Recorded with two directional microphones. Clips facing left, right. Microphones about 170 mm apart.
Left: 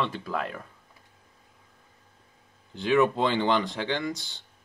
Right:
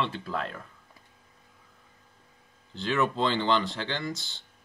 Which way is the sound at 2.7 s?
15° left (ahead or behind).